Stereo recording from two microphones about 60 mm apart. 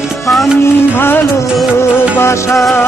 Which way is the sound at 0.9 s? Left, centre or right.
Left.